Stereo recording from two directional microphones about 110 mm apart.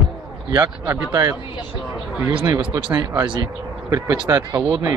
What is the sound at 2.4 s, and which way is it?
Speech, 30° right (ahead or behind).